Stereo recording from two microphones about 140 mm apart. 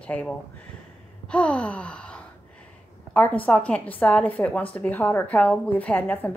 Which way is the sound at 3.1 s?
10° left (ahead or behind).